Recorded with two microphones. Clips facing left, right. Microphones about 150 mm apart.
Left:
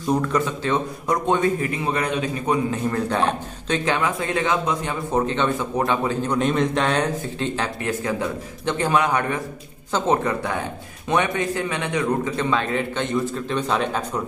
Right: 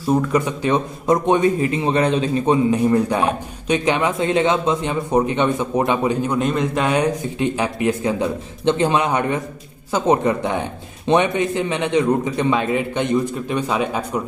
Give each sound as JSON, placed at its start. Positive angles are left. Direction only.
{"t": 0.0, "sound": "a man's voice", "side_deg": -5}
{"t": 0.5, "sound": "a man's voice", "side_deg": -15}
{"t": 2.7, "sound": "a man's voice", "side_deg": -15}
{"t": 6.2, "sound": "a man's voice", "side_deg": -5}